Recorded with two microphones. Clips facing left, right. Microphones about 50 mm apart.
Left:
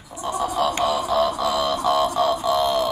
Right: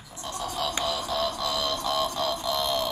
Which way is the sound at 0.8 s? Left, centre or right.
Centre.